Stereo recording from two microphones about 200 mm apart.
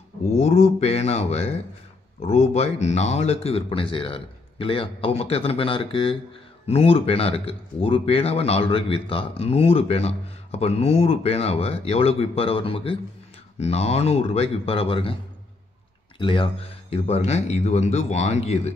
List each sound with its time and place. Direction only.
0.2 s speech: 35° left (ahead or behind)
16.2 s speech: 25° left (ahead or behind)